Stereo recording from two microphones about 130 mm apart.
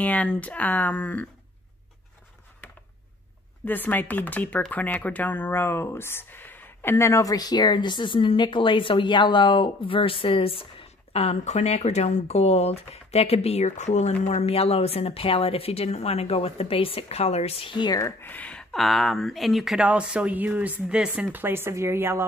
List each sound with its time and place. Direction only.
0.0 s speech: 10° left (ahead or behind)
3.6 s speech: 15° left (ahead or behind); by 18.0 s 35° left (ahead or behind)
18.0 s speech: 15° left (ahead or behind); by 22.2 s 20° right (ahead or behind)